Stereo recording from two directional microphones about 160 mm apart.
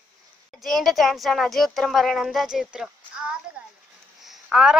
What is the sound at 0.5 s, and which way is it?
Speech, centre (ahead or behind).